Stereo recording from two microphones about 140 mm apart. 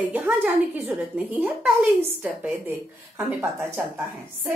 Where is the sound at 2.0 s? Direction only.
15° right (ahead or behind).